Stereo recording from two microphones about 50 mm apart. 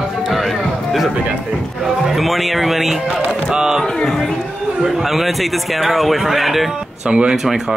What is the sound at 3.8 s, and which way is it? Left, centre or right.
Speech, centre.